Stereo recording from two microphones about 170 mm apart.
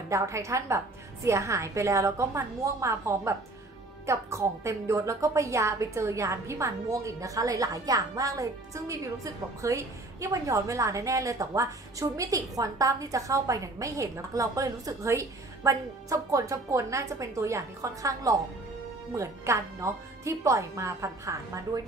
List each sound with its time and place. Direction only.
0.1 s a woman's voice: 15° right (ahead or behind)